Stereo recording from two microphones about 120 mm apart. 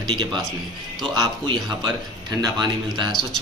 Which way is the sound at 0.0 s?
40° right (ahead or behind).